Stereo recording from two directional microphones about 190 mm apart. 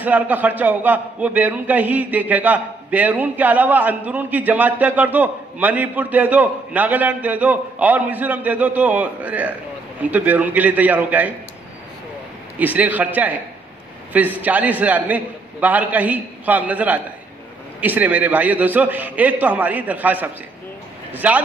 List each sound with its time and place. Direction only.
0.0 s a man's voice: 10° right (ahead or behind)
12.5 s a man's voice: 10° right (ahead or behind)